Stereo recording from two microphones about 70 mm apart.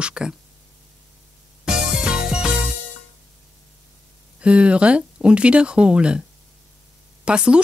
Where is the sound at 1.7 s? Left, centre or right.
Centre.